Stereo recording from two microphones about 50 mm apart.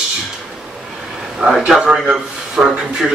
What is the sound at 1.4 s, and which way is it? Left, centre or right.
Speech, centre.